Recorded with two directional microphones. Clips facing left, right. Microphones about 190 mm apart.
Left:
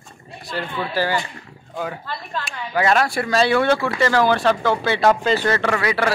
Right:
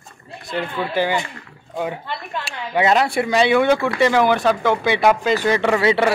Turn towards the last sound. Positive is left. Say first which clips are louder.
# right 4 dB
turn(degrees=-25)  # may be behind; listen again after turning